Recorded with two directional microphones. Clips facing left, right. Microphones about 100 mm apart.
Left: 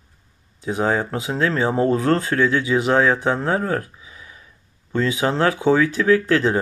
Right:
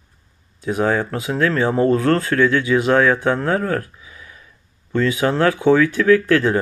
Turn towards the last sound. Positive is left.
turn(degrees=20)  # may be behind; listen again after turning